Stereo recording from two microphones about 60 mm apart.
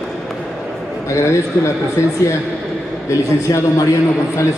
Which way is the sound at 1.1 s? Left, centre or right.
Left.